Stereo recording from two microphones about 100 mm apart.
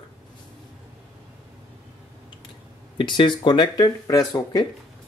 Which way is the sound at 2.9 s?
55° left (ahead or behind).